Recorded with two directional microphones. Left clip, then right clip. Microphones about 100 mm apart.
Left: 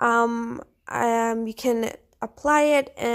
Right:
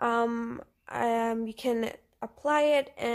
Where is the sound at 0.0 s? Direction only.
30° left (ahead or behind).